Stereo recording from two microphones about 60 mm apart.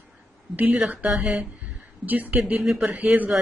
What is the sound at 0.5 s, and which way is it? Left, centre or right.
Speech, right.